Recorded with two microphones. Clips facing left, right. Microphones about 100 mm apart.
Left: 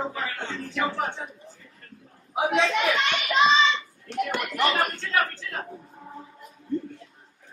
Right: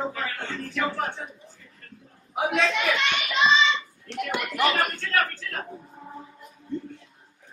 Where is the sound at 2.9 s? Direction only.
35° left (ahead or behind).